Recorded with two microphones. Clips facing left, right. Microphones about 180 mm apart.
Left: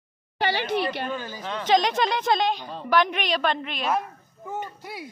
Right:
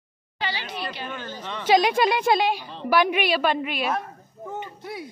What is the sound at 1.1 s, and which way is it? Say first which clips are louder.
Speech: left 2 dB; 10° left (ahead or behind).